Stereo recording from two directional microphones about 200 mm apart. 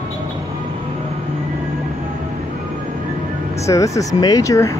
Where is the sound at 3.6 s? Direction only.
15° left (ahead or behind).